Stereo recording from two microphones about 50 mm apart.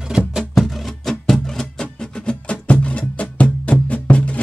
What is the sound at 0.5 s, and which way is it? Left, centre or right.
Music, centre.